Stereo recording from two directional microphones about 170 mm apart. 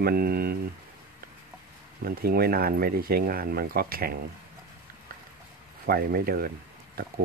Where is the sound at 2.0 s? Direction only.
65° right (ahead or behind).